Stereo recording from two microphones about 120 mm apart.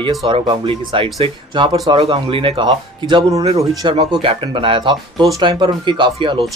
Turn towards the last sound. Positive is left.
turn(degrees=-45)  # may be behind; listen again after turning